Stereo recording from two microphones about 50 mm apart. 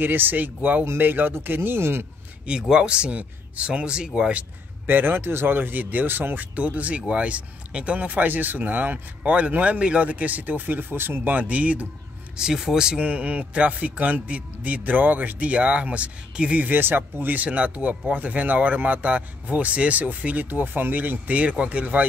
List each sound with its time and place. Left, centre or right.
0.0 s speech: right
0.9 s speech: right
2.7 s speech: centre
4.8 s speech: right
11.2 s speech: right
12.4 s speech: centre
16.7 s speech: right
20.4 s speech: right